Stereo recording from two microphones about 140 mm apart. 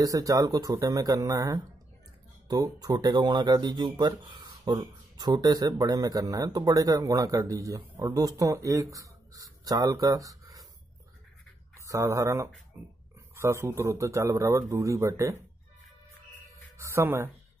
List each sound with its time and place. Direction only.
0.0 s speech: 25° right (ahead or behind)
11.8 s speech: 20° right (ahead or behind)
16.7 s speech: 20° right (ahead or behind)